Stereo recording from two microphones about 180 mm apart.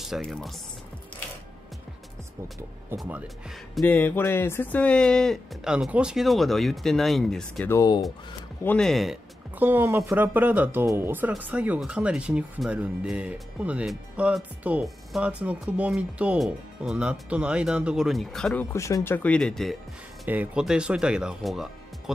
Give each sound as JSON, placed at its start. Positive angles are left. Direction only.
{"t": 0.0, "sound": "speech", "side_deg": 0}
{"t": 3.0, "sound": "speech", "side_deg": -10}
{"t": 3.8, "sound": "speech", "side_deg": 10}
{"t": 7.7, "sound": "speech", "side_deg": 20}
{"t": 8.6, "sound": "speech", "side_deg": 5}